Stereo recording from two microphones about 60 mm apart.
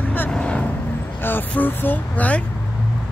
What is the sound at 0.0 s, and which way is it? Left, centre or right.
Vehicle, left.